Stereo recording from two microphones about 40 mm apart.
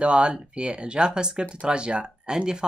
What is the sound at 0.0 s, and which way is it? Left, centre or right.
Speech, right.